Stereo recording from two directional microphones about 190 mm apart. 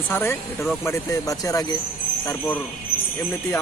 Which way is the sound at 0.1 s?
10° left (ahead or behind).